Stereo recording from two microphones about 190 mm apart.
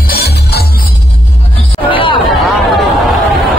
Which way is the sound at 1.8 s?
25° left (ahead or behind).